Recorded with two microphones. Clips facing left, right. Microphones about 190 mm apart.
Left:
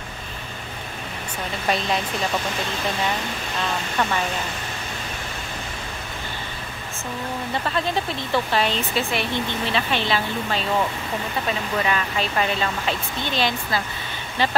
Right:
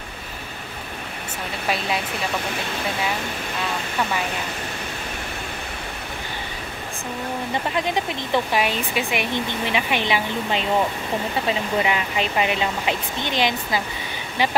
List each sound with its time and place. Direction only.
7.6 s speech: 15° right (ahead or behind)